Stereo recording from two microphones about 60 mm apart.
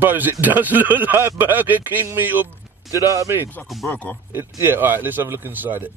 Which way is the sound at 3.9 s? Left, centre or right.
Left.